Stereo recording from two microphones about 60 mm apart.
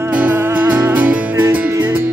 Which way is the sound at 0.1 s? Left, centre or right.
Right.